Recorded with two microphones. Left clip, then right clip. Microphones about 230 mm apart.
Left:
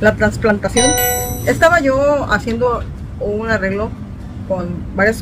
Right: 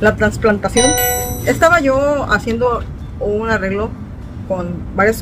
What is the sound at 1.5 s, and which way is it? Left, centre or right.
Speech, centre.